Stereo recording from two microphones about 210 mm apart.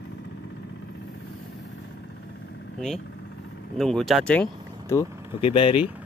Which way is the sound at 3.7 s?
Centre (ahead or behind).